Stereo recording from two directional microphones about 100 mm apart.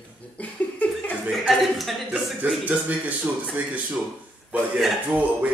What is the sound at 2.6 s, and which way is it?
Speech, 15° right (ahead or behind).